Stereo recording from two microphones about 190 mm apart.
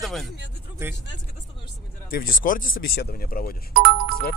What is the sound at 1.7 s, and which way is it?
Speech, 50° left (ahead or behind).